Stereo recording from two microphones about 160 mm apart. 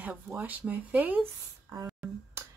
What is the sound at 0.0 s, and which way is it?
Speech, 10° right (ahead or behind).